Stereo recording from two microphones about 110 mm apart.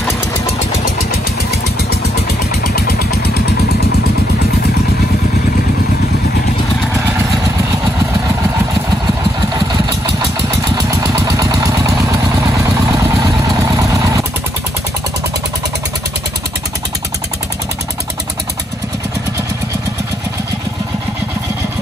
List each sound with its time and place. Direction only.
10.8 s vehicle: 35° right (ahead or behind)